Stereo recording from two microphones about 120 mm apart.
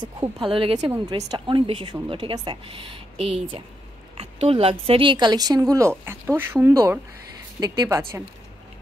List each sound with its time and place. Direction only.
0.0 s a woman's voice: 40° right (ahead or behind); by 7.0 s 20° right (ahead or behind)
7.6 s speech: 35° right (ahead or behind)